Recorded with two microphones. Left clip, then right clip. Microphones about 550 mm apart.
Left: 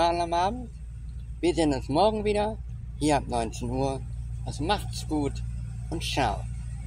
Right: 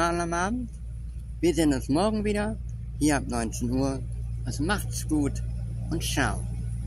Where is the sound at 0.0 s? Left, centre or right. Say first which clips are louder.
Left 2 dB; right.